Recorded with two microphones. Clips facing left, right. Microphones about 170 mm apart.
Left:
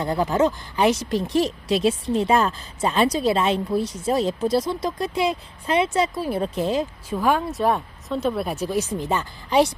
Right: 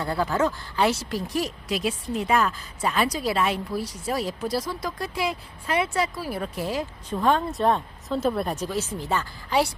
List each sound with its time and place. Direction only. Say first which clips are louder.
0.0 s speech: left 4 dB; 20° left (ahead or behind)
7.1 s speech: even; 10° left (ahead or behind)
8.5 s speech: left 4 dB; 10° left (ahead or behind)